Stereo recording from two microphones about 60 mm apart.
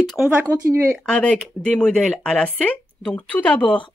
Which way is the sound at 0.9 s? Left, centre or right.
Centre.